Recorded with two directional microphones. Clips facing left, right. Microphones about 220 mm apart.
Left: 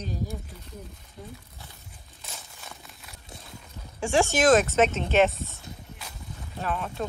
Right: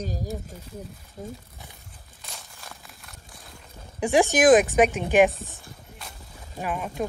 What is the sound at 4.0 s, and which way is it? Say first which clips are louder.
Speech: right 3 dB; 15° right (ahead or behind).